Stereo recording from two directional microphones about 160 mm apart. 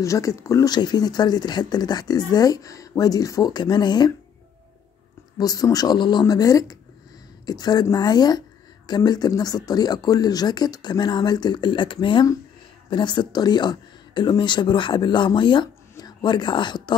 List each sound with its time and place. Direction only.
0.0 s speech: 20° left (ahead or behind)
5.4 s speech: 20° left (ahead or behind)